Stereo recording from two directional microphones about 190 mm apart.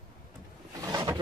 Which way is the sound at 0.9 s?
20° right (ahead or behind).